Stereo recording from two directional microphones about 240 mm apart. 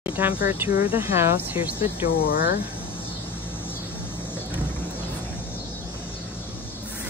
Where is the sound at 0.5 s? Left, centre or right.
Centre.